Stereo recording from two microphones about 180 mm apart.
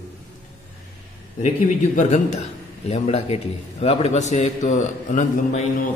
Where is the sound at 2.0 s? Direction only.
40° left (ahead or behind).